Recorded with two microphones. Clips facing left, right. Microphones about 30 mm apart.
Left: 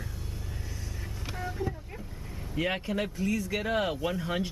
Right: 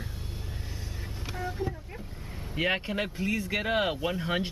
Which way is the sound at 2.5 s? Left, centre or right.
Right.